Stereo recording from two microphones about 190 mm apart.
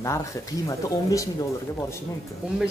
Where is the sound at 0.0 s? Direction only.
15° left (ahead or behind).